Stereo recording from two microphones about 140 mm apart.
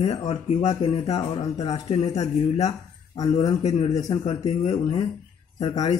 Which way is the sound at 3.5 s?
50° left (ahead or behind).